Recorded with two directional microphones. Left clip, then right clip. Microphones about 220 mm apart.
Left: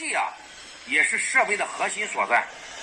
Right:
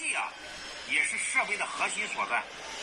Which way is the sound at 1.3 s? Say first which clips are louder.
Left 6 dB; 15° left (ahead or behind).